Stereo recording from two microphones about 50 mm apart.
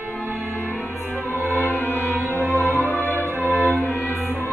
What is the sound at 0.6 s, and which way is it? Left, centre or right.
Music, left.